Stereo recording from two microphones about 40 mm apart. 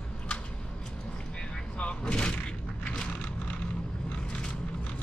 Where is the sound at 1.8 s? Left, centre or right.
Left.